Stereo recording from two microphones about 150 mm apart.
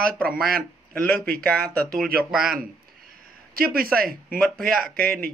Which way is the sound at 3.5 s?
80° right.